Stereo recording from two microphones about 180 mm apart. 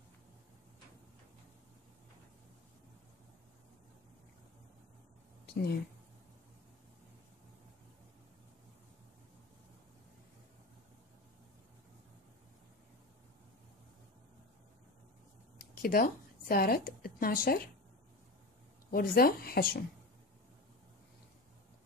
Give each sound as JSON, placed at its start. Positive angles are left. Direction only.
{"t": 5.5, "sound": "speech", "side_deg": 65}
{"t": 15.5, "sound": "a woman's voice", "side_deg": 55}
{"t": 18.9, "sound": "speech", "side_deg": 55}